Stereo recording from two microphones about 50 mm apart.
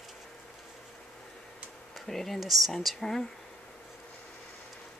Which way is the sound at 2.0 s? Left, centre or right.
Centre.